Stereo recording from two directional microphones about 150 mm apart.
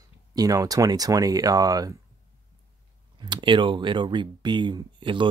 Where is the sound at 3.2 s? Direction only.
30° right (ahead or behind).